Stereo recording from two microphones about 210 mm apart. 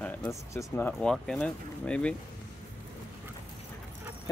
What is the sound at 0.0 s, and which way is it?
Speech, 10° left (ahead or behind).